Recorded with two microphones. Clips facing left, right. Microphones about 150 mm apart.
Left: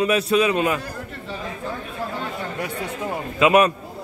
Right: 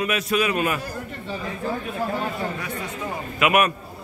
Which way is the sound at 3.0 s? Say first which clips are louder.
Left 4 dB; 25° left (ahead or behind).